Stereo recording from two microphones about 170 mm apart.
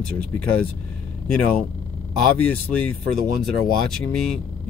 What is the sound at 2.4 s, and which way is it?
Speech, 5° left (ahead or behind).